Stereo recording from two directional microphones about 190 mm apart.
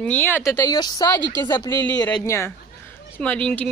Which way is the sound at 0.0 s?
10° left (ahead or behind).